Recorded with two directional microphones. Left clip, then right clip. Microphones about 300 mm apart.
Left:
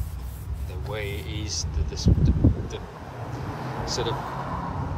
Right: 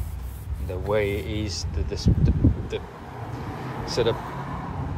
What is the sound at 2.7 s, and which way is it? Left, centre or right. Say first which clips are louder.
Speech: right 4 dB; centre.